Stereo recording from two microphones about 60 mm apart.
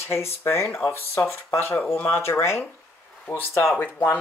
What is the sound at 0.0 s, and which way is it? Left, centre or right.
Speech, left.